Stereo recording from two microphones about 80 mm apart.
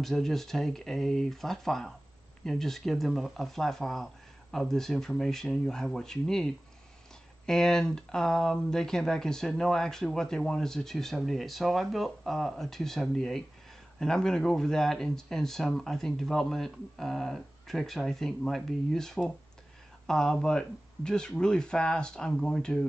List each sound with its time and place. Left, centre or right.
0.0 s speech: centre